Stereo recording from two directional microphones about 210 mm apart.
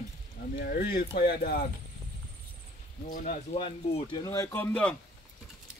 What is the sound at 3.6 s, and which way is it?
Speech, 25° left (ahead or behind).